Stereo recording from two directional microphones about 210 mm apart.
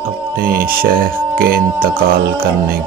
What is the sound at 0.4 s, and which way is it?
Speech, 45° right (ahead or behind).